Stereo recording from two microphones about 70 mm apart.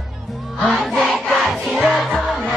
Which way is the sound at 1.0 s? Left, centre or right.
Centre.